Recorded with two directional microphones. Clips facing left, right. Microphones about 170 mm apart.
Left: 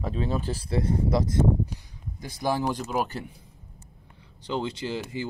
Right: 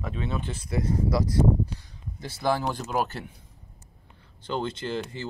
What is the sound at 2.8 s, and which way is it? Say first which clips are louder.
Speech: even; 10° left (ahead or behind).